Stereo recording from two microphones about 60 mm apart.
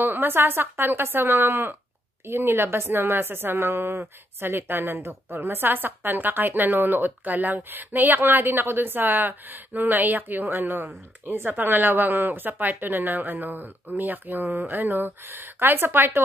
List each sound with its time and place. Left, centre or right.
0.0 s a woman's voice: right